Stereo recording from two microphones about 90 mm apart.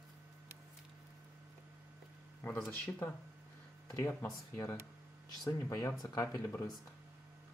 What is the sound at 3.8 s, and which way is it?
Speech, 35° left (ahead or behind).